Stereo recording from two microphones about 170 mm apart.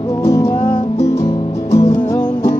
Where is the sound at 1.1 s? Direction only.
20° left (ahead or behind).